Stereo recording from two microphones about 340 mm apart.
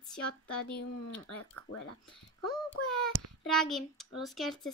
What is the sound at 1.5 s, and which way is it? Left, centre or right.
Speech, left.